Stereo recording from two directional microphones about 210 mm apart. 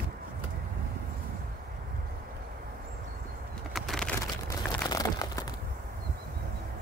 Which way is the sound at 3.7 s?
Centre (ahead or behind).